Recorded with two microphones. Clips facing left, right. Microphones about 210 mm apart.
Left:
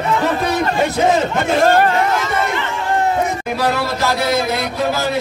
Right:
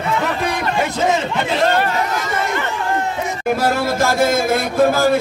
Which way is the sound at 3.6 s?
50° right (ahead or behind).